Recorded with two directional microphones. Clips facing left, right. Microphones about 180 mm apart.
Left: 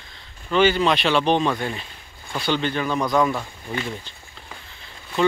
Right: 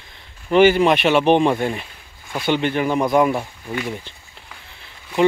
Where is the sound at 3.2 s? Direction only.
10° right (ahead or behind).